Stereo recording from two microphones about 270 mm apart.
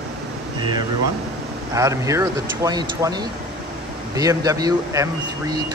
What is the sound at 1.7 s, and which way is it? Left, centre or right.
Speech, centre.